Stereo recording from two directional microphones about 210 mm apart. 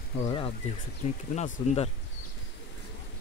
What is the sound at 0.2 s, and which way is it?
Speech, 25° left (ahead or behind).